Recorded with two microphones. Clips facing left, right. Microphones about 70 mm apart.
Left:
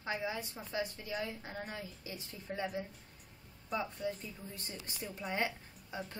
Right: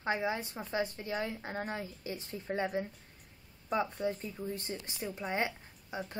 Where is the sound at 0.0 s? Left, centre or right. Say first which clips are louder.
Right 5 dB; right.